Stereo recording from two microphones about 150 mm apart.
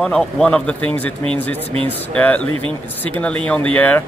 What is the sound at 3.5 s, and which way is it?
Speech, 10° left (ahead or behind).